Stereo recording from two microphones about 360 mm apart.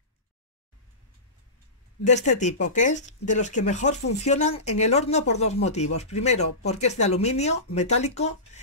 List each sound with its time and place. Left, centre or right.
2.0 s speech: centre